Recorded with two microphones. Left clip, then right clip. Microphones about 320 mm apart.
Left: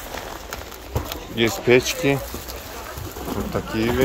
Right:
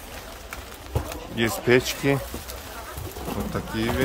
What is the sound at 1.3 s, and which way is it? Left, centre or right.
Speech, centre.